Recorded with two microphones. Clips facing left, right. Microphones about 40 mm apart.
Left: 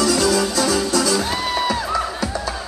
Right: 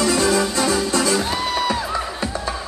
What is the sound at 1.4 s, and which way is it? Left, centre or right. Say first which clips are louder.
Music: even; centre.